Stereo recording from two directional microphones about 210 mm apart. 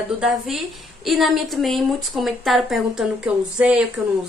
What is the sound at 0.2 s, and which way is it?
A woman's voice, centre (ahead or behind).